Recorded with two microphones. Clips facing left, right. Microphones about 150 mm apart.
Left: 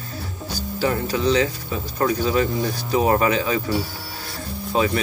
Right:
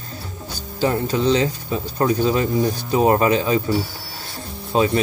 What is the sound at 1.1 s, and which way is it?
Speech, 25° right (ahead or behind).